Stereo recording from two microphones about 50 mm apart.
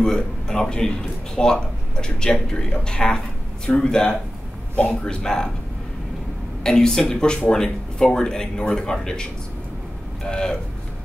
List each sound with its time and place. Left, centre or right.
0.0 s speech: centre
6.6 s speech: centre